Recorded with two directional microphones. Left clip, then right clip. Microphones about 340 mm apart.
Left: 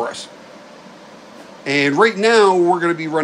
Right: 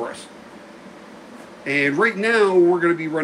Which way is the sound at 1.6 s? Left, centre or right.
Centre.